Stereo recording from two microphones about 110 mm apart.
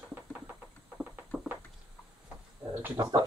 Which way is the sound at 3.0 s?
35° right (ahead or behind).